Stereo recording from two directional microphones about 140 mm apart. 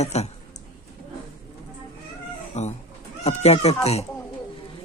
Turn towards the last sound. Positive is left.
turn(degrees=50)  # may be behind; listen again after turning